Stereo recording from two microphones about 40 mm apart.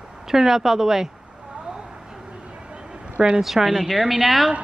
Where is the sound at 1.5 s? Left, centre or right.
Right.